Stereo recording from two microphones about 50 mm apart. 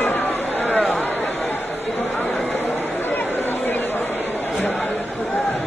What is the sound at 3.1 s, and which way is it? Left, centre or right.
Chatter, left.